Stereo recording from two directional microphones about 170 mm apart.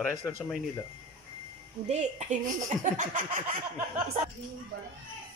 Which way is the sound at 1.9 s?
45° right (ahead or behind).